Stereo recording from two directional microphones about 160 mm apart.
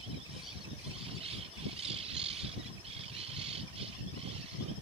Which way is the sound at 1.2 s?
40° right (ahead or behind).